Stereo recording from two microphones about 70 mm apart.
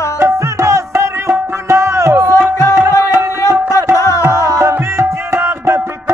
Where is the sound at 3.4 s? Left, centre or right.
Left.